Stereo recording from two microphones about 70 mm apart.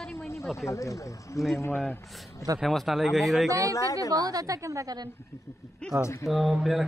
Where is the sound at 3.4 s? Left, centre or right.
Right.